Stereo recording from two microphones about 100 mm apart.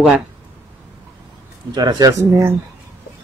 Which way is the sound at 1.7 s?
45° right (ahead or behind).